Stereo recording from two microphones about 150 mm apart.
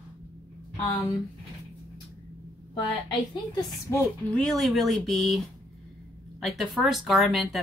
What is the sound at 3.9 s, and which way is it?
Speech, 20° left (ahead or behind).